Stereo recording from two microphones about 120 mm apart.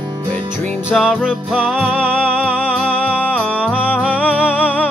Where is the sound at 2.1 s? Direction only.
10° left (ahead or behind).